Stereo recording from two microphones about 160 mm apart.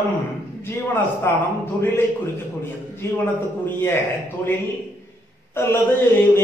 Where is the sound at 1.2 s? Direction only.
15° left (ahead or behind).